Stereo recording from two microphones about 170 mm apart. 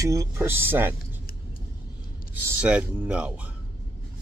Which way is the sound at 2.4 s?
10° right (ahead or behind).